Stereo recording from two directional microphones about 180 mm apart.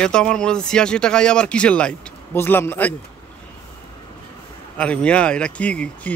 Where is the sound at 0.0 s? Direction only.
5° left (ahead or behind).